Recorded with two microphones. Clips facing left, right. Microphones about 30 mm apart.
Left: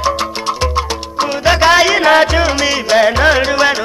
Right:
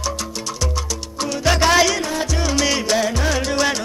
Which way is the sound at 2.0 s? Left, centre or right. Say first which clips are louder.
Left 13 dB; left.